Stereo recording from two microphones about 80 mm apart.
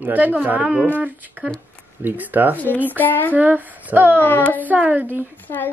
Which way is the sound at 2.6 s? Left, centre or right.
Left.